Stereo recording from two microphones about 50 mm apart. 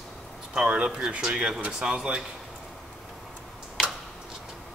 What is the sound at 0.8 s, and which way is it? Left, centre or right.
Speech, centre.